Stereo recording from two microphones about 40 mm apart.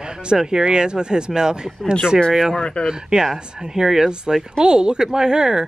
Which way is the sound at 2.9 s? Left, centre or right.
Centre.